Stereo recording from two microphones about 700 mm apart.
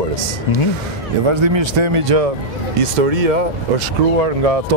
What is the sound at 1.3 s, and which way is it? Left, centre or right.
Speech, right.